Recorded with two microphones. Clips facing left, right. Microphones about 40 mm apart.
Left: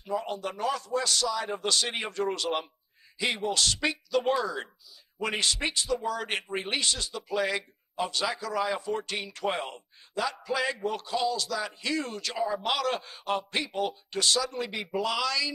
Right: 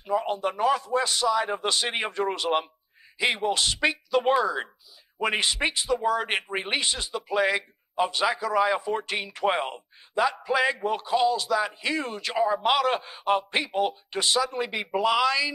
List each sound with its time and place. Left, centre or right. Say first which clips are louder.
0.0 s speech: right 6 dB; right